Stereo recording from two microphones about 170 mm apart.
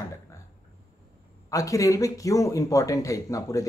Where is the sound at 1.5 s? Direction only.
20° left (ahead or behind).